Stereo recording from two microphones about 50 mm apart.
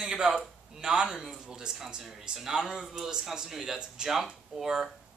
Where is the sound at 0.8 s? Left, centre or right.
Centre.